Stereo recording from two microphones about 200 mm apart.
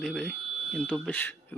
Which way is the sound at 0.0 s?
Centre (ahead or behind).